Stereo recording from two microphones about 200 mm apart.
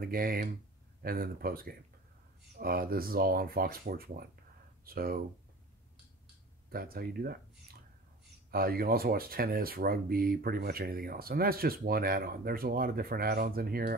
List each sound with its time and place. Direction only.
0.0 s speech: 45° right (ahead or behind)
6.7 s speech: 50° right (ahead or behind)
8.5 s speech: 50° right (ahead or behind)